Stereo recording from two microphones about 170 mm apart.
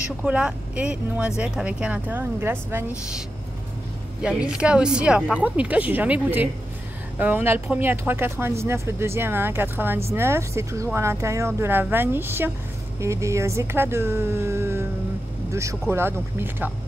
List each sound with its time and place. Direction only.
0.2 s speech: 5° right (ahead or behind)
4.2 s speech: 5° right (ahead or behind)